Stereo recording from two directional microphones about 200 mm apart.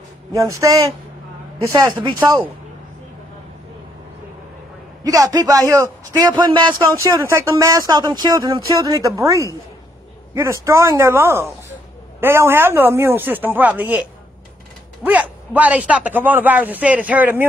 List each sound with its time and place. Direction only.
0.3 s speech: 15° right (ahead or behind)
5.0 s a man's voice: 20° right (ahead or behind)
15.0 s speech: 5° right (ahead or behind)